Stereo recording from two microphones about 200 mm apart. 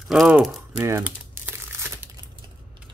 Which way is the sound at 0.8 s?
10° right (ahead or behind).